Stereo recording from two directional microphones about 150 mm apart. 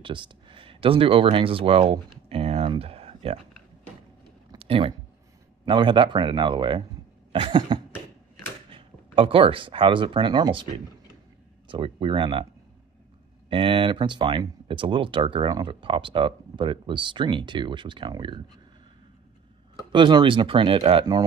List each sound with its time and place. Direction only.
0.0 s speech: 35° right (ahead or behind)
4.6 s a sound: 40° right (ahead or behind)
5.7 s speech: 30° right (ahead or behind)
13.5 s speech: 35° right (ahead or behind)
19.9 s speech: 35° right (ahead or behind)